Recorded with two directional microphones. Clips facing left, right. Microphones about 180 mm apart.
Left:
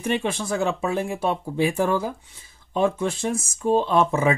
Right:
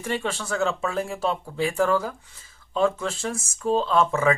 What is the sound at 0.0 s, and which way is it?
Speech, 15° left (ahead or behind).